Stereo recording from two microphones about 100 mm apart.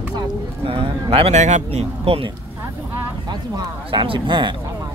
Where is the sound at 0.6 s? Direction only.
65° right (ahead or behind).